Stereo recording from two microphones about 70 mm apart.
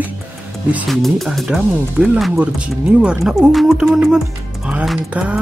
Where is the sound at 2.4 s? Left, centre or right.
Centre.